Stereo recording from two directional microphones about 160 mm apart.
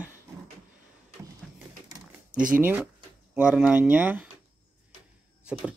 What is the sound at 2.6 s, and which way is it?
Speech, 10° right (ahead or behind).